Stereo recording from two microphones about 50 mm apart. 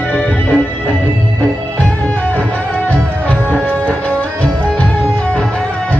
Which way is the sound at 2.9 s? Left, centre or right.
Left.